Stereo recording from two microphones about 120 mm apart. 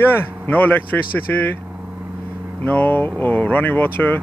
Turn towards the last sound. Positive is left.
turn(degrees=15)  # may be behind; listen again after turning